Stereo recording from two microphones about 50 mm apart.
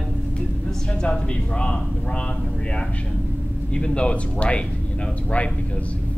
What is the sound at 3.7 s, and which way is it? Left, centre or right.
Speech, left.